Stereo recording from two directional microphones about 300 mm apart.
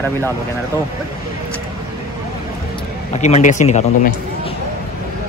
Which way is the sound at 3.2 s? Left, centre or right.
Left.